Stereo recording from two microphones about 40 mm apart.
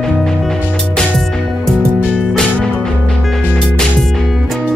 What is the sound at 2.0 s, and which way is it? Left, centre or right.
Music, right.